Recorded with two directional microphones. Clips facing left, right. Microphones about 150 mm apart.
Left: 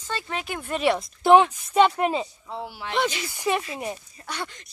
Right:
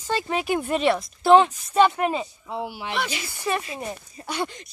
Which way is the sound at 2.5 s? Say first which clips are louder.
Right 6 dB; 15° right (ahead or behind).